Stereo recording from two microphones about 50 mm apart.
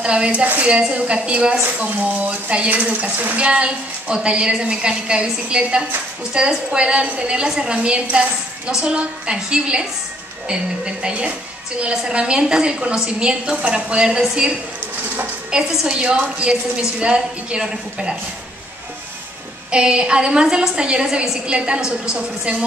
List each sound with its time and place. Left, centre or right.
0.0 s a woman's voice: right
3.3 s a woman's voice: right
15.7 s a woman's voice: centre
19.7 s a woman's voice: centre